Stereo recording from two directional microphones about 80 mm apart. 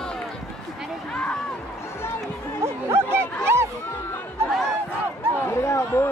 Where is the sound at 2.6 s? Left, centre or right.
Right.